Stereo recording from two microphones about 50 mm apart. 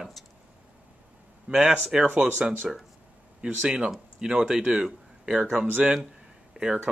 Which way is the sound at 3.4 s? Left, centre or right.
Right.